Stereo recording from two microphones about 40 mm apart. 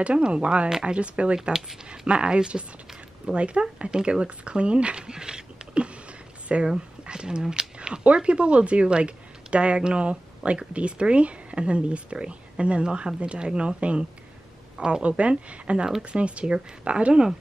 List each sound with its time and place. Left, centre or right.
0.0 s speech: right